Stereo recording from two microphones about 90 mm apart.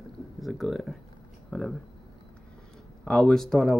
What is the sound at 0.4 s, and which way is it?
Speech, centre (ahead or behind).